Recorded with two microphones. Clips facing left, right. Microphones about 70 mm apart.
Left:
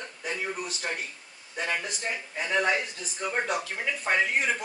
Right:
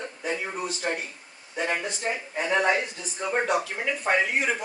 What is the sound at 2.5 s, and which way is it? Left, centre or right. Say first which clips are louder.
Speech: right 2 dB; right.